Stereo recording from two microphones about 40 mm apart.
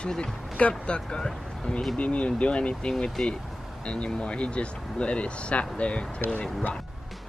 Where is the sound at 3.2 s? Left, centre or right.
Centre.